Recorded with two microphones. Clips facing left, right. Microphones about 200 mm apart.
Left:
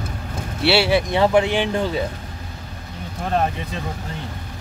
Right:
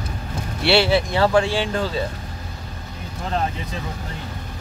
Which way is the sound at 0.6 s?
10° left (ahead or behind).